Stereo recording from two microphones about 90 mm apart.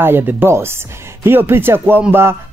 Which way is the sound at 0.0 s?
20° right (ahead or behind).